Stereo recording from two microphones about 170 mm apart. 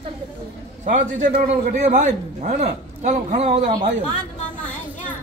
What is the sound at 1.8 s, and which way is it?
A man's voice, 45° right (ahead or behind).